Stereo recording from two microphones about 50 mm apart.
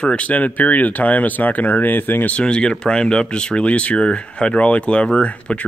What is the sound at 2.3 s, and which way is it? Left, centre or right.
Speech, centre.